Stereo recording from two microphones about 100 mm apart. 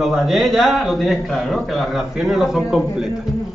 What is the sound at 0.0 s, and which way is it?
A man's voice, centre (ahead or behind).